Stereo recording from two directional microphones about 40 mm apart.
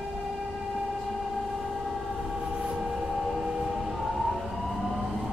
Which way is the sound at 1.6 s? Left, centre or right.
Centre.